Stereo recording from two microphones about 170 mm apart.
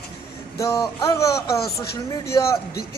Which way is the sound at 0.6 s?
20° left (ahead or behind).